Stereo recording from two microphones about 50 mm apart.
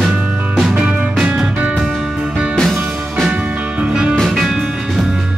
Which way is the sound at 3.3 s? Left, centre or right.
Right.